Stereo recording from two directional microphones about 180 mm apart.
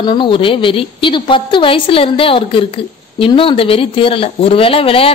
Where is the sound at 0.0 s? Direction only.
25° left (ahead or behind).